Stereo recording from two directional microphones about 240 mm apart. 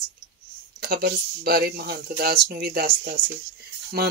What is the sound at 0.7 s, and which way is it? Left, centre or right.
Speech, right.